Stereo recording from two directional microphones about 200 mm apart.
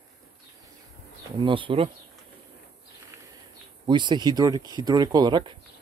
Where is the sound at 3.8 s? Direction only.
25° right (ahead or behind).